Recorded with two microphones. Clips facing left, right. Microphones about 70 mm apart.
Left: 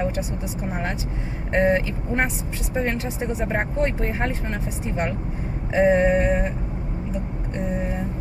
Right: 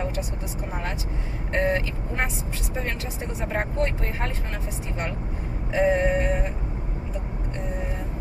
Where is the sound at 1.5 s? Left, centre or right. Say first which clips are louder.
Left 4 dB; left.